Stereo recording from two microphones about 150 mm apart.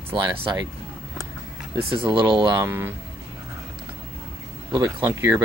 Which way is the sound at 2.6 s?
15° right (ahead or behind).